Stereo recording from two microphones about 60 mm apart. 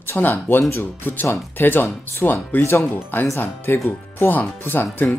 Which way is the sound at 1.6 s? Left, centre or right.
Left.